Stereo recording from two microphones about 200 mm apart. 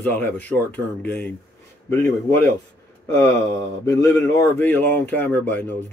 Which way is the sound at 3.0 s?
15° left (ahead or behind).